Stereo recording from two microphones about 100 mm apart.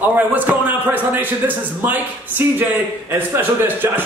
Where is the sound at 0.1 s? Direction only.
15° right (ahead or behind).